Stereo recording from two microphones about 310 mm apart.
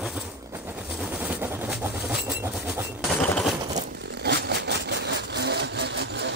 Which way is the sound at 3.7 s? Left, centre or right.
Right.